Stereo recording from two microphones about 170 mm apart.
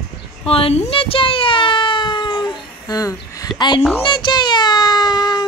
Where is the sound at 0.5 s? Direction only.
35° left (ahead or behind).